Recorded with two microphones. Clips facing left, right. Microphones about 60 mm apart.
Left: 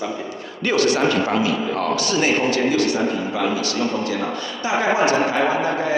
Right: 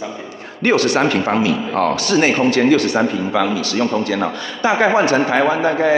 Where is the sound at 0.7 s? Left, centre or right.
Right.